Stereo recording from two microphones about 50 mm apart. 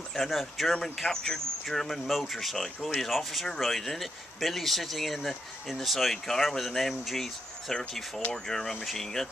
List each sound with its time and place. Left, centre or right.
0.1 s speech: centre
1.1 s speech: centre
2.0 s speech: centre
2.3 s speech: centre